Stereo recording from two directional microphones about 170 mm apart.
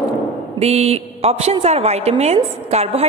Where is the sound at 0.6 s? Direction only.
40° right (ahead or behind).